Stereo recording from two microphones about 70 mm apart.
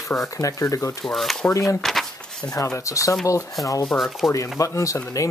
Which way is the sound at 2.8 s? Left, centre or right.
Left.